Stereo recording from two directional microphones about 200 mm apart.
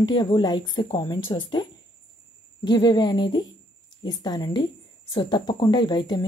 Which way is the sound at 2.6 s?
20° left (ahead or behind).